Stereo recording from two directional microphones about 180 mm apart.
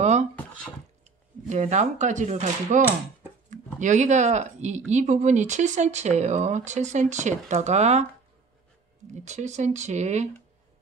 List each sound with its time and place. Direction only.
0.0 s a sound: 40° right (ahead or behind)
1.0 s speech: 40° right (ahead or behind)
9.1 s speech: 40° right (ahead or behind)